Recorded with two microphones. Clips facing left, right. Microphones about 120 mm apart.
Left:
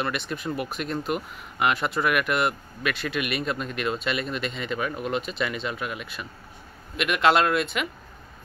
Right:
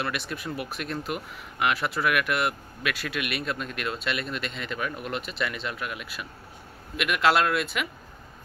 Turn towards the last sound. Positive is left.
turn(degrees=0)  # may be behind; listen again after turning